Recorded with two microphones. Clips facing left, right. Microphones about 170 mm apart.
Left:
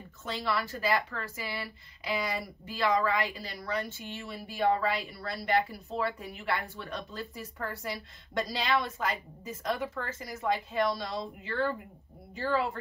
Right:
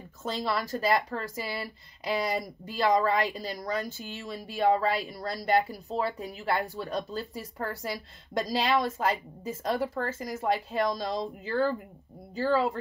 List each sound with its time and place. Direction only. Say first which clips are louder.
0.2 s speech: right 2 dB; 40° right (ahead or behind)